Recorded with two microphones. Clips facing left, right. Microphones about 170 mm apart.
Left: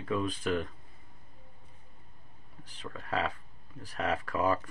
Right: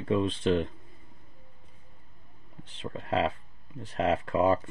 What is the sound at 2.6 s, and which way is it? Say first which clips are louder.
Speech: right 5 dB; 25° right (ahead or behind).